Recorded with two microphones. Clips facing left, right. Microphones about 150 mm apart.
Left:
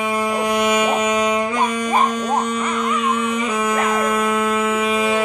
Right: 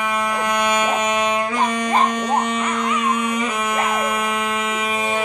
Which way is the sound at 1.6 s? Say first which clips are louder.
Even; 10° left (ahead or behind).